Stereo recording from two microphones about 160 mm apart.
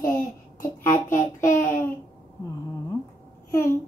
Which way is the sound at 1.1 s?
55° left (ahead or behind).